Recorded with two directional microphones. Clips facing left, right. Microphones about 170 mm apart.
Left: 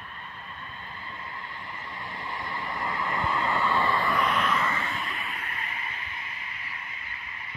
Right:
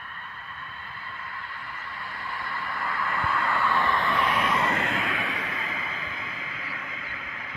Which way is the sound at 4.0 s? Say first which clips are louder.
Even; centre (ahead or behind).